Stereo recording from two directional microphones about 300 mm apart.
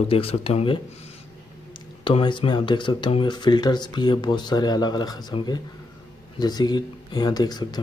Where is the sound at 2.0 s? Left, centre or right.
Centre.